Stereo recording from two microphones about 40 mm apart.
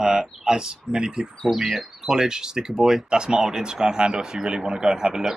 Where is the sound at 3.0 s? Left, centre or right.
Right.